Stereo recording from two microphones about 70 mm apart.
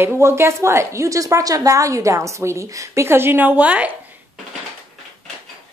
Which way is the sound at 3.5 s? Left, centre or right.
Right.